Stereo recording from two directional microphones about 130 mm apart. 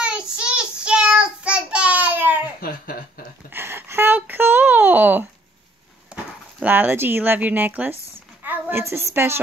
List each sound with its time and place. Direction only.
0.0 s child singing: 5° right (ahead or behind)
3.4 s a sound: 15° right (ahead or behind)
6.0 s a woman's voice: 10° right (ahead or behind)